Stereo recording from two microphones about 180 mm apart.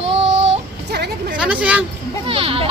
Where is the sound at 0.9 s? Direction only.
65° right (ahead or behind).